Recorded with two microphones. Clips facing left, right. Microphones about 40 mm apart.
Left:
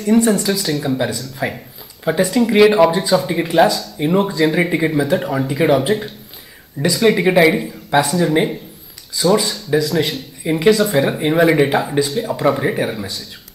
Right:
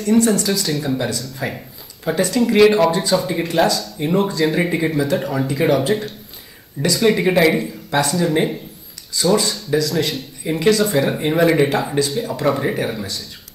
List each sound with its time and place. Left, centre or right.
0.0 s speech: centre